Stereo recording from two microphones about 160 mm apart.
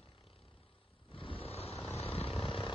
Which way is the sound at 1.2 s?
35° left (ahead or behind).